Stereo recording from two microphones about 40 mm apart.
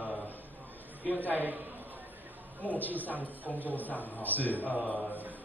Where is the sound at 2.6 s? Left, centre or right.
Left.